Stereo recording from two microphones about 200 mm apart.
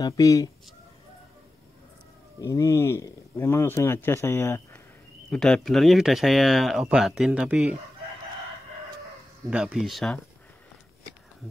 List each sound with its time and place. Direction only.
0.0 s speech: 15° left (ahead or behind)
2.4 s speech: 15° left (ahead or behind)
5.3 s speech: 5° left (ahead or behind)
9.5 s speech: 5° right (ahead or behind)